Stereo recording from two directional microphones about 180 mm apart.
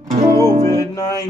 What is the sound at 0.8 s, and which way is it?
Music, 20° left (ahead or behind).